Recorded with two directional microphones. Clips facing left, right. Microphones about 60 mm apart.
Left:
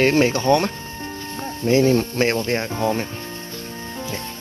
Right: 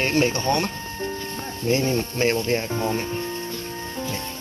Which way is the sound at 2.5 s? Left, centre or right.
Left.